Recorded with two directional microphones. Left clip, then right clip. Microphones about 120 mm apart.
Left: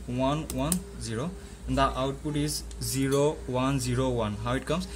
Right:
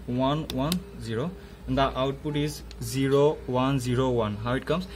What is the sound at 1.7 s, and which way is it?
Speech, 25° right (ahead or behind).